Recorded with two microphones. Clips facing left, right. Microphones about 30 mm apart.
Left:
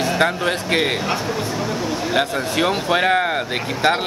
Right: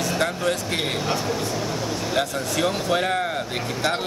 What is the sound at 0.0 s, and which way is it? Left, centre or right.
Speech, left.